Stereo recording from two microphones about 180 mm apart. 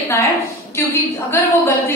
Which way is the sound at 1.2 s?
15° left (ahead or behind).